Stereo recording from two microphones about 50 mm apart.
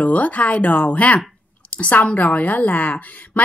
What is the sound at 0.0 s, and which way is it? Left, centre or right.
A woman's voice, left.